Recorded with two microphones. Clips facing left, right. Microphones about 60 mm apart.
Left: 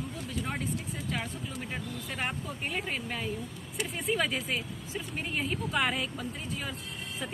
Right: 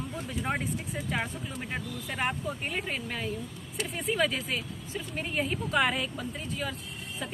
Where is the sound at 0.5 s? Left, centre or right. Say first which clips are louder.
Right 6 dB; right.